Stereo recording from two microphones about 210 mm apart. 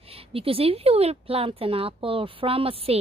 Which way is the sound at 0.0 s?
25° right (ahead or behind).